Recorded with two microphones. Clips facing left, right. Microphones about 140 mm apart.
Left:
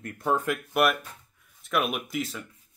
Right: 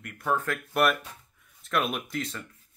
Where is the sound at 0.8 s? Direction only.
5° left (ahead or behind).